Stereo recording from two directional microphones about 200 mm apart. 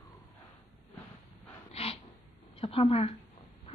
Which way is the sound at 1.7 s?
30° left (ahead or behind).